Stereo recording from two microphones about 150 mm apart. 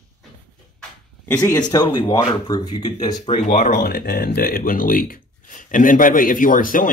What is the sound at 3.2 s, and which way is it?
Speech, 55° left (ahead or behind).